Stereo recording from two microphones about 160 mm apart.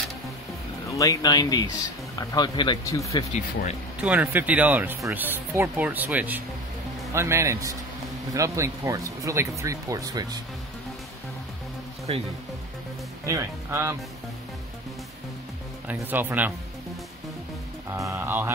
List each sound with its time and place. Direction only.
0.9 s speech: 20° left (ahead or behind)
4.0 s speech: 10° right (ahead or behind)
12.1 s speech: 40° right (ahead or behind)
13.2 s speech: 20° right (ahead or behind)
15.9 s speech: 10° right (ahead or behind)
17.9 s speech: 15° right (ahead or behind)